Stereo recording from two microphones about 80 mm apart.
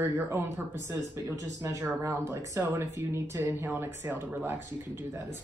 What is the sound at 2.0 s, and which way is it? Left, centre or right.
Speech, right.